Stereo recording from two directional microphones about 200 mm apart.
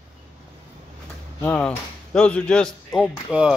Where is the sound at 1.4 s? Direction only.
10° left (ahead or behind).